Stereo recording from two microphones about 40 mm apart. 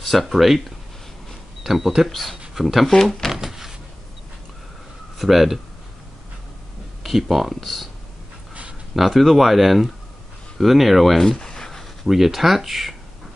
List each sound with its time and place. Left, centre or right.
0.1 s speech: centre
1.6 s speech: centre
2.0 s speech: centre
3.1 s a sound: centre
5.2 s speech: centre
7.0 s speech: centre
8.9 s speech: centre
11.2 s a sound: centre
12.0 s speech: centre